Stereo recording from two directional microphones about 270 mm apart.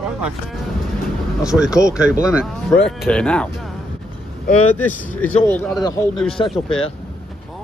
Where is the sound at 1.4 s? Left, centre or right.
Centre.